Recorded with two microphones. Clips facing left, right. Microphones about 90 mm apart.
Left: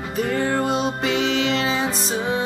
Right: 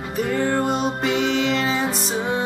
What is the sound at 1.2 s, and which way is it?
Music, 90° left.